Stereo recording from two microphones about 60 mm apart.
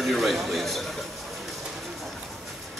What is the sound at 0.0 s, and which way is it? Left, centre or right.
A man's voice, centre.